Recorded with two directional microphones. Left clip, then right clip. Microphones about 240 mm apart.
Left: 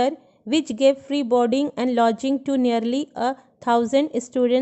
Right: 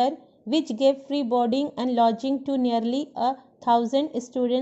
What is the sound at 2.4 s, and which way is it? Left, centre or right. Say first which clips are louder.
Speech: left 3 dB; left.